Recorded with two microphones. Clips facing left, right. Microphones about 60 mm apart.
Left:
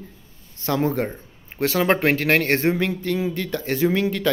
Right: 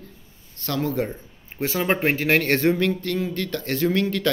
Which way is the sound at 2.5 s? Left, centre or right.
Left.